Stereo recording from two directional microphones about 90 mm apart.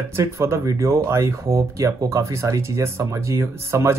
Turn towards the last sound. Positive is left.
turn(degrees=-30)  # may be behind; listen again after turning